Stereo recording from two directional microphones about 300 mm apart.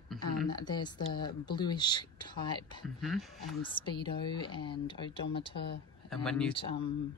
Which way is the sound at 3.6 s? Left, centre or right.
Centre.